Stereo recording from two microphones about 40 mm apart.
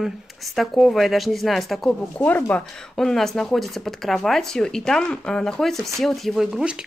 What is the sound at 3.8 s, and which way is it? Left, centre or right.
Speech, centre.